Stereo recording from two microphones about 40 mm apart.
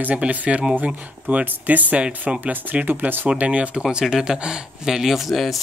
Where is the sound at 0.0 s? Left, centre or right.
Right.